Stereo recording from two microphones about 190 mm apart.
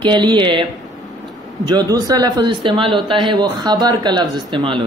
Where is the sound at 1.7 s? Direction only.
20° right (ahead or behind).